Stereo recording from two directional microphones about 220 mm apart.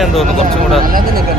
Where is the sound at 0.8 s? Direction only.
40° right (ahead or behind).